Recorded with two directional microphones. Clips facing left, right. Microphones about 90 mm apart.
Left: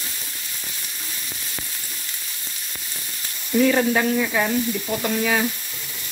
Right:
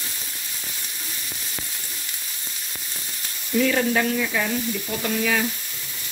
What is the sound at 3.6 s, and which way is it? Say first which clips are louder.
Speech: left 3 dB; 20° left (ahead or behind).